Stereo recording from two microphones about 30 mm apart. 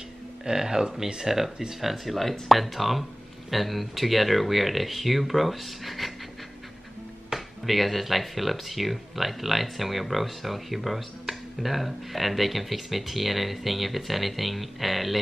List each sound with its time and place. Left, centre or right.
0.5 s speech: centre
1.8 s speech: centre
7.3 s speech: centre